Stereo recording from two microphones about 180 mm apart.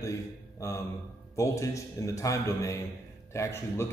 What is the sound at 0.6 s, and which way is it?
A man's voice, 15° left (ahead or behind).